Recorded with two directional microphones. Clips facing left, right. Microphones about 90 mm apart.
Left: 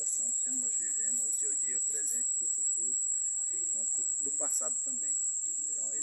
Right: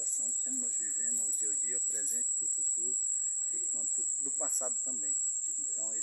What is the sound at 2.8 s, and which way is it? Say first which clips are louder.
Speech: right 4 dB; 25° right (ahead or behind).